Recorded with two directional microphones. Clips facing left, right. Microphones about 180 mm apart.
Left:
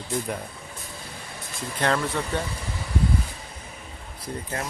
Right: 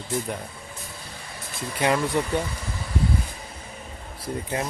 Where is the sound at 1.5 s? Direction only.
10° right (ahead or behind).